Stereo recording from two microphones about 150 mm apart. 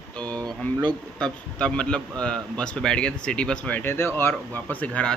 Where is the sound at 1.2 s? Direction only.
5° left (ahead or behind).